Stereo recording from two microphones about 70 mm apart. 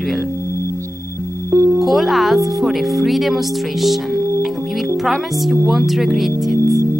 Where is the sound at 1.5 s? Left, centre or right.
Right.